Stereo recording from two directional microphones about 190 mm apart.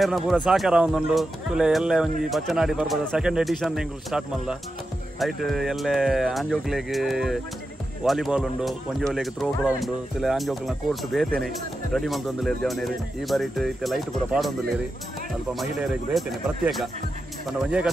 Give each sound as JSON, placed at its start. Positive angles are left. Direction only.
{"t": 0.0, "sound": "speech", "side_deg": 0}